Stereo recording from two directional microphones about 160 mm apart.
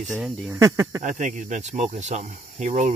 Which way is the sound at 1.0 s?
50° right (ahead or behind).